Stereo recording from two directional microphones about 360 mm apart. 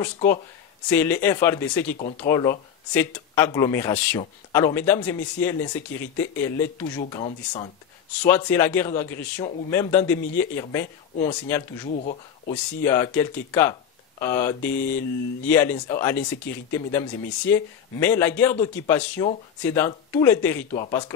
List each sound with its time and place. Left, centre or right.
0.0 s speech: centre
12.5 s speech: centre